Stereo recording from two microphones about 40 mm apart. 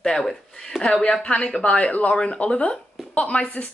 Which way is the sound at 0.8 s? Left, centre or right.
Left.